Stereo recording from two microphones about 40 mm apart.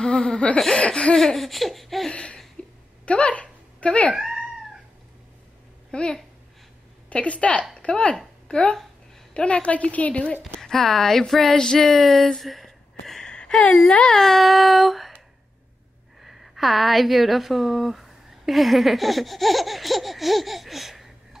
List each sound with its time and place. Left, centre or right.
0.0 s laughter: centre
0.7 s speech: left
1.1 s a sound: centre
2.0 s a sound: centre
3.1 s speech: left
4.2 s cat: centre
5.9 s a woman's voice: left
10.6 s speech: centre
11.5 s speech: centre
11.8 s a sound: centre
13.3 s speech: centre
14.1 s a sound: centre
16.2 s a woman's voice: centre